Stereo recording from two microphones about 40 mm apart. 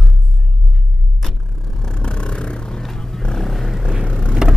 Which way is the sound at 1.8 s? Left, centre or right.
Centre.